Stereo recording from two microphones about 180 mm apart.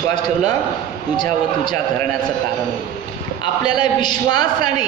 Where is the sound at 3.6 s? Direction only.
25° left (ahead or behind).